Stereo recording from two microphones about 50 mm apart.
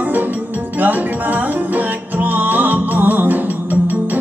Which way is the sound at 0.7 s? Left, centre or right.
Right.